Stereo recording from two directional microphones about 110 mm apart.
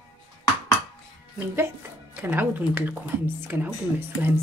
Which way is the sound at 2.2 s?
15° right (ahead or behind).